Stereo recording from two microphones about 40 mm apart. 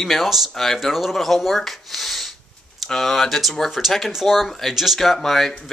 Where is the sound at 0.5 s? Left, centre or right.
Centre.